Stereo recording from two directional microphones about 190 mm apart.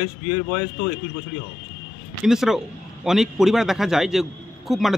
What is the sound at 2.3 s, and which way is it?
Speech, centre (ahead or behind).